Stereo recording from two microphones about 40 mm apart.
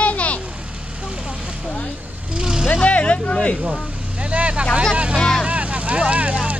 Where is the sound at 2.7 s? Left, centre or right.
Left.